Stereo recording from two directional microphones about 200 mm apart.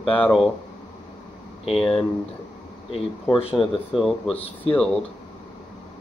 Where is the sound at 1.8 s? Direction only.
25° left (ahead or behind).